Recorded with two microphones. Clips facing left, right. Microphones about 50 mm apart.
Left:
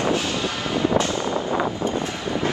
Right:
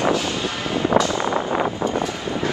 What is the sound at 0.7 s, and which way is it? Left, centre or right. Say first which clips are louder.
Music: right 1 dB; right.